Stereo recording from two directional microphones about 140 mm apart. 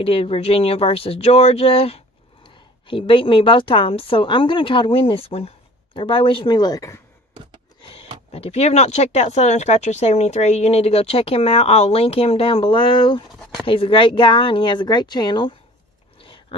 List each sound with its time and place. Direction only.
0.0 s a woman's voice: 45° left (ahead or behind); by 7.0 s 25° left (ahead or behind)
8.3 s a woman's voice: 50° left (ahead or behind)
16.2 s a sound: 40° left (ahead or behind)